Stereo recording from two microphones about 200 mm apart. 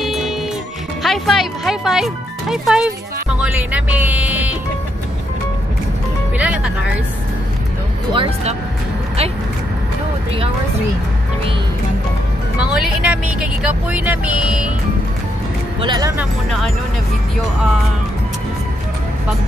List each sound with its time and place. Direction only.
0.0 s music: centre (ahead or behind)
1.0 s speech: centre (ahead or behind)
6.3 s music: 5° right (ahead or behind)
8.1 s speech: 25° right (ahead or behind)
12.5 s speech: 5° right (ahead or behind)
15.8 s speech: 20° right (ahead or behind)